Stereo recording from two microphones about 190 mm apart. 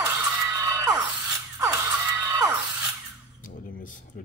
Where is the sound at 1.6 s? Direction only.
15° right (ahead or behind).